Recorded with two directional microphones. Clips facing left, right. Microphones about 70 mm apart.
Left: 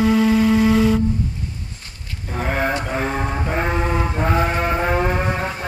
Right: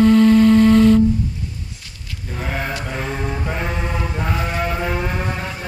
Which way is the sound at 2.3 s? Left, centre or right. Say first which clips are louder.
Left 4 dB; left.